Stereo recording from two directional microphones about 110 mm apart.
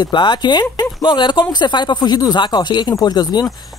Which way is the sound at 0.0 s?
45° left (ahead or behind).